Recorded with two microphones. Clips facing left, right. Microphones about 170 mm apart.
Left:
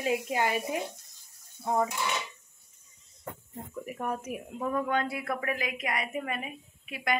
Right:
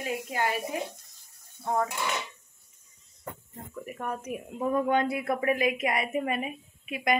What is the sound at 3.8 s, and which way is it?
Speech, 10° left (ahead or behind).